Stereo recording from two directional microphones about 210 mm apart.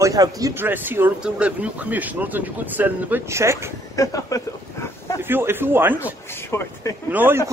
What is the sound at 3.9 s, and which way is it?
Speech, 15° left (ahead or behind).